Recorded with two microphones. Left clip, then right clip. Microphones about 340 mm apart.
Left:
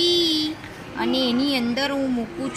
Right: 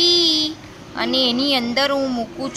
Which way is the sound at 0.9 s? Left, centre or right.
Right.